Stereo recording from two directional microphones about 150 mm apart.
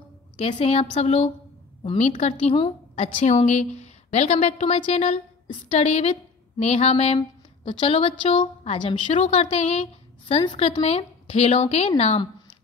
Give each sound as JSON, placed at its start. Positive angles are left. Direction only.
{"t": 0.4, "sound": "a woman's voice", "side_deg": 40}